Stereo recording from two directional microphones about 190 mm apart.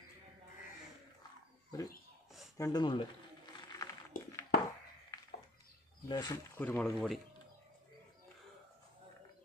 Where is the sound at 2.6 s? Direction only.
20° left (ahead or behind).